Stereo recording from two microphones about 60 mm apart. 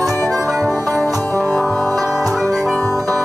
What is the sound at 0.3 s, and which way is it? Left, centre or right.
Music, right.